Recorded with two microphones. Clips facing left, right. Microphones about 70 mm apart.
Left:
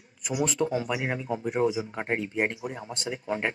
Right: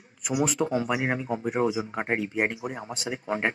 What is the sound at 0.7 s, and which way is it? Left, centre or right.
Speech, right.